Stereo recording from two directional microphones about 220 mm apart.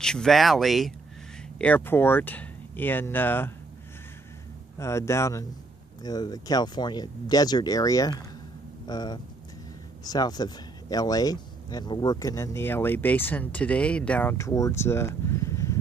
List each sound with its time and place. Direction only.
0.0 s speech: 5° left (ahead or behind)
4.7 s speech: 10° left (ahead or behind)